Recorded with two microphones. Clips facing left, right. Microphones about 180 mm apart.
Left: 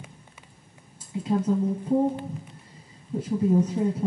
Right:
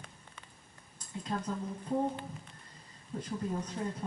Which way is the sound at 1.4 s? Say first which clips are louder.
Left 12 dB; 20° left (ahead or behind).